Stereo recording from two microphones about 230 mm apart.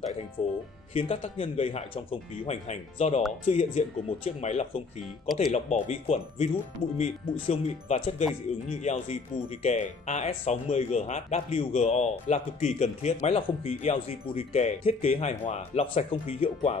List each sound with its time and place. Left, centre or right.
0.4 s speech: left